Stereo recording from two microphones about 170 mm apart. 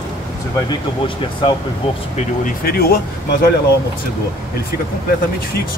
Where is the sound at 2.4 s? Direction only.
60° left (ahead or behind).